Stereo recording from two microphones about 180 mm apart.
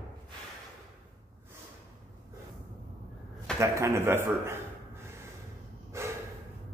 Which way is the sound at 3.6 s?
15° right (ahead or behind).